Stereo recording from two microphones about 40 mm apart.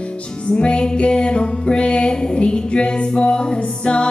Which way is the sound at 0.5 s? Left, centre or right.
Left.